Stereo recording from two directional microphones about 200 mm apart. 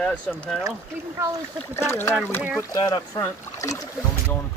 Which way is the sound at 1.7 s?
10° left (ahead or behind).